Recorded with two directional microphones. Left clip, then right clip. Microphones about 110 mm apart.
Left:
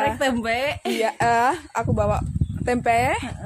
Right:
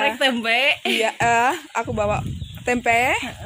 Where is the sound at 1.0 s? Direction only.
15° right (ahead or behind).